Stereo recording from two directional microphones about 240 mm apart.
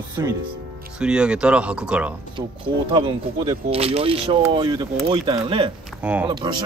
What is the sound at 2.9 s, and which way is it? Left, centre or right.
Speech, right.